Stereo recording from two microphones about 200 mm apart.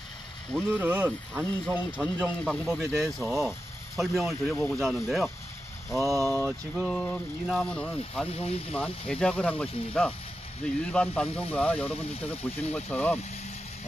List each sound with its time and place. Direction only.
0.7 s speech: 10° right (ahead or behind)
6.0 s speech: 15° right (ahead or behind)
6.7 s speech: centre (ahead or behind)
8.3 s speech: 30° left (ahead or behind)
8.7 s speech: 5° left (ahead or behind)